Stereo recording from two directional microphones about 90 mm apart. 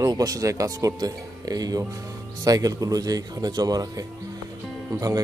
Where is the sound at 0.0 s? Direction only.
45° right (ahead or behind).